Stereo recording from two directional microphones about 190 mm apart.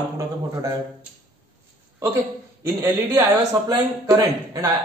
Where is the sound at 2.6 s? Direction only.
15° right (ahead or behind).